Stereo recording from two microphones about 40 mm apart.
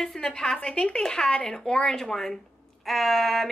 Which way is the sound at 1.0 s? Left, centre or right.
Centre.